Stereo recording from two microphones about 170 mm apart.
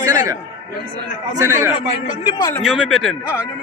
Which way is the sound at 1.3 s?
15° right (ahead or behind).